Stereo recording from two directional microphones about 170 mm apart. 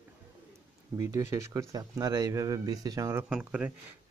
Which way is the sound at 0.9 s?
20° right (ahead or behind).